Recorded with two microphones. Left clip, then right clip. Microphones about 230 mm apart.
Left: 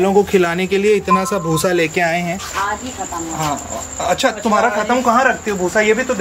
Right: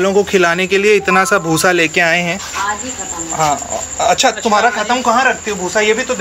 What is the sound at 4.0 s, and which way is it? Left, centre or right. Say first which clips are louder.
Speech: right 4 dB; centre.